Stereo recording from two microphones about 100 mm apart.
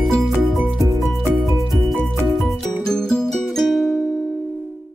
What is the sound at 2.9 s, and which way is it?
Music, 5° left (ahead or behind).